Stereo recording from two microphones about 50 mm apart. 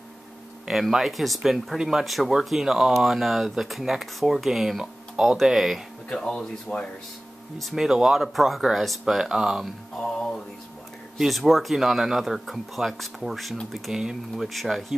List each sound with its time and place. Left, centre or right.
0.7 s speech: centre
5.1 s speech: centre
5.4 s speech: centre
6.0 s speech: centre
7.7 s speech: centre
11.1 s speech: centre